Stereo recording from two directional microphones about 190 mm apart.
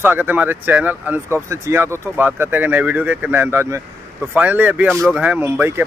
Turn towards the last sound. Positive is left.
turn(degrees=-10)  # may be behind; listen again after turning